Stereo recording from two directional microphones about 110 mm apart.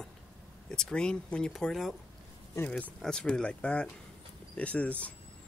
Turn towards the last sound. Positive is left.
turn(degrees=10)  # may be behind; listen again after turning